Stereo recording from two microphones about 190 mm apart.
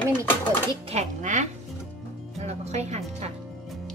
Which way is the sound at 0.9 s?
40° right (ahead or behind).